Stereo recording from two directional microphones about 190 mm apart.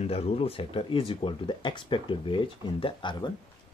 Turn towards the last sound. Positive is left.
turn(degrees=25)  # may be behind; listen again after turning